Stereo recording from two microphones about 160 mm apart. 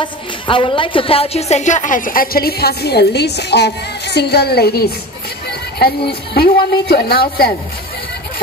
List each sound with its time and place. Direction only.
0.0 s a woman's voice: 30° left (ahead or behind); by 7.5 s 75° left (ahead or behind)